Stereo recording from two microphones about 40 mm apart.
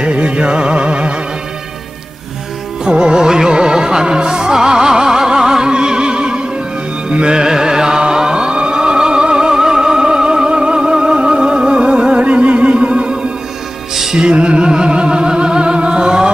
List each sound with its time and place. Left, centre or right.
0.0 s music: right
2.8 s music: right
7.4 s music: centre
13.9 s music: centre
14.2 s music: right